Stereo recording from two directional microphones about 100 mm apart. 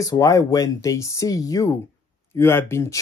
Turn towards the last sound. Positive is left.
turn(degrees=25)  # may be behind; listen again after turning